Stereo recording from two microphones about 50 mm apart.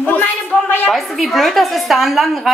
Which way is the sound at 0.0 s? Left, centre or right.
Left.